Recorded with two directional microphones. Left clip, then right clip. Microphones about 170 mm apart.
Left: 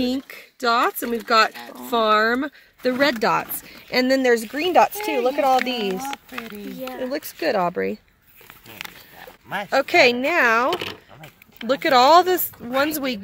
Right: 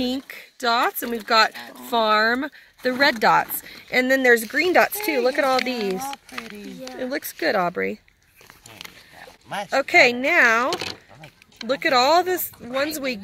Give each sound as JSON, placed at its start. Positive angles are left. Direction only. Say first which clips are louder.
{"t": 0.3, "sound": "speech", "louder": "left 1 dB", "side_deg": 0}
{"t": 9.7, "sound": "speech", "louder": "even", "side_deg": 10}
{"t": 10.7, "sound": "speech", "louder": "left 2 dB", "side_deg": -30}
{"t": 11.6, "sound": "speech", "louder": "left 3 dB", "side_deg": 10}